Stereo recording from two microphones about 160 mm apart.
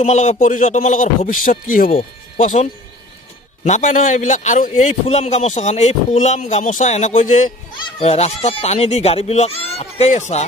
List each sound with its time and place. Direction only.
0.0 s a man's voice: 45° left (ahead or behind)
1.9 s a man's voice: 45° left (ahead or behind)
8.0 s speech: 40° left (ahead or behind)